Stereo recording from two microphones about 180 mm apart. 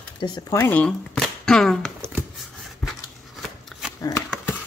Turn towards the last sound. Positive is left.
turn(degrees=15)  # may be behind; listen again after turning